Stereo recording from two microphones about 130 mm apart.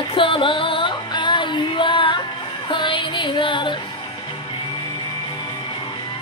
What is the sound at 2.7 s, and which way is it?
Music, 40° left (ahead or behind).